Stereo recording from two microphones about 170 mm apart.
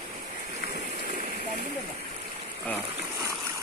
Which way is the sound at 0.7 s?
40° right (ahead or behind).